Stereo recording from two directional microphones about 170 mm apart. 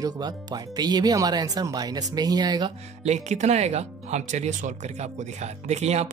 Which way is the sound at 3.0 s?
40° right (ahead or behind).